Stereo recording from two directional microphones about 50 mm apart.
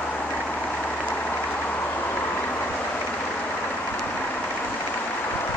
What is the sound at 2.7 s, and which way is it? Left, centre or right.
Vehicle, left.